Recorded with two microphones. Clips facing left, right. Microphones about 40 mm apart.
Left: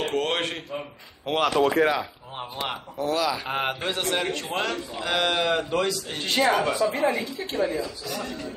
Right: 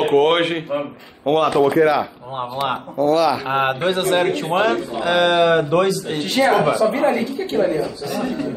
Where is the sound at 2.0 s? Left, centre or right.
Centre.